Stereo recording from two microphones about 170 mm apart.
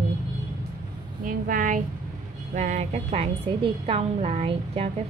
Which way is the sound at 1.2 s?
55° right (ahead or behind).